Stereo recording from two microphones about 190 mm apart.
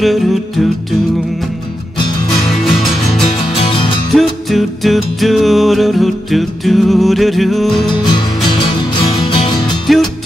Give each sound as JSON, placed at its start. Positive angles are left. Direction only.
{"t": 0.0, "sound": "music", "side_deg": 0}
{"t": 4.1, "sound": "music", "side_deg": 0}
{"t": 8.6, "sound": "music", "side_deg": 25}
{"t": 9.9, "sound": "music", "side_deg": 0}